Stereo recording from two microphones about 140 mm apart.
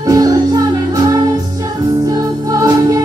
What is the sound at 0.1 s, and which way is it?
Music, 25° right (ahead or behind).